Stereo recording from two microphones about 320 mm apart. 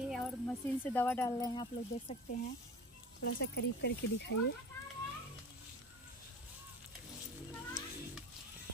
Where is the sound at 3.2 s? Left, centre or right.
Left.